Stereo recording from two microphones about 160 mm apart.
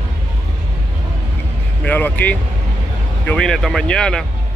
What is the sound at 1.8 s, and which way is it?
Speech, 10° left (ahead or behind).